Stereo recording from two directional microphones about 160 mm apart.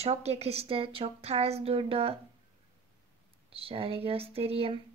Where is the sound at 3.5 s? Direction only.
35° right (ahead or behind).